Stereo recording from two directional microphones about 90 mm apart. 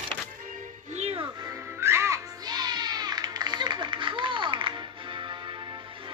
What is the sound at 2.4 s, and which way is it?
Music, 50° right (ahead or behind).